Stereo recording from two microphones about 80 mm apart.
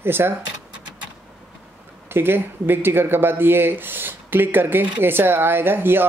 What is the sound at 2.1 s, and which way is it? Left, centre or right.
Speech, right.